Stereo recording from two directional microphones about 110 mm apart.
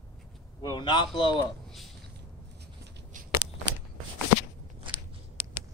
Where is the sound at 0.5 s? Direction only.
45° left (ahead or behind).